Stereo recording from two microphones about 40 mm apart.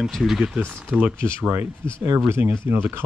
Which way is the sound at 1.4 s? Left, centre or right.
Right.